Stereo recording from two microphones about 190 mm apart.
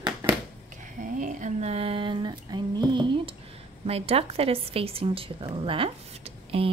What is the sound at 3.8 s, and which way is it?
A woman's voice, 30° right (ahead or behind).